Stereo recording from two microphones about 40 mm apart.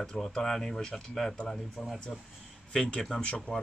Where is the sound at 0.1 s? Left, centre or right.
Centre.